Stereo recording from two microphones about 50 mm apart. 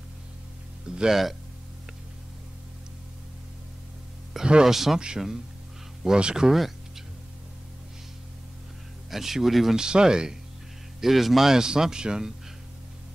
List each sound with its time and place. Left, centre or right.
0.8 s speech: centre
4.5 s speech: centre
4.7 s speech: centre
9.1 s speech: centre
9.8 s speech: centre